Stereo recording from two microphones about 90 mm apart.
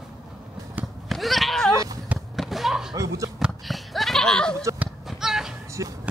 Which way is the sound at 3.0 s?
40° right (ahead or behind).